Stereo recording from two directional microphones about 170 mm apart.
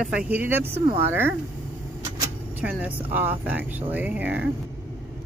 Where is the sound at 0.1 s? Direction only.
10° right (ahead or behind).